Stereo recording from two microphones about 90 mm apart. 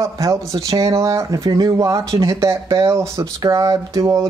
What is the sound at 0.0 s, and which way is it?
Speech, 40° right (ahead or behind).